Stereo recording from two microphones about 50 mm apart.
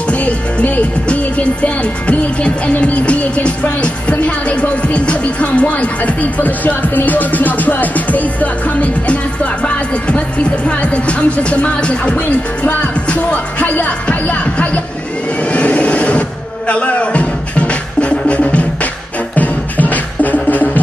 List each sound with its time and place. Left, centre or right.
0.1 s music: left